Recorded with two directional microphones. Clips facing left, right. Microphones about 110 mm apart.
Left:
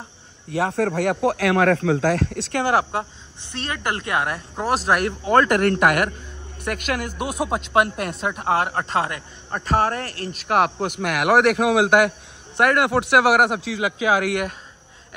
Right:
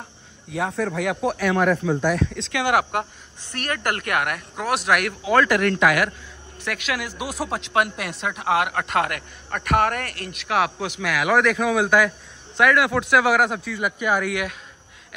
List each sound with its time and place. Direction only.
0.5 s speech: 65° left (ahead or behind); by 2.4 s 80° left
2.5 s a man's voice: 35° left (ahead or behind)
7.3 s speech: 5° left (ahead or behind)
7.7 s a man's voice: 40° left (ahead or behind); by 14.3 s 90° left